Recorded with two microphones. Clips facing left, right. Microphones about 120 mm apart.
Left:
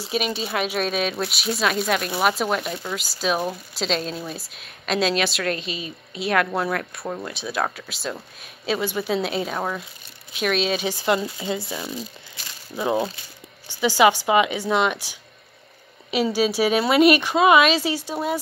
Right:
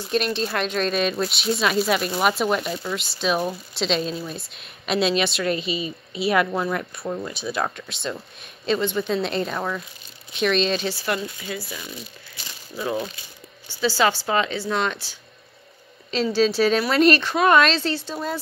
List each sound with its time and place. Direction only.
0.0 s a woman's voice: 5° left (ahead or behind); by 13.1 s 25° left (ahead or behind)
13.7 s speech: 15° left (ahead or behind)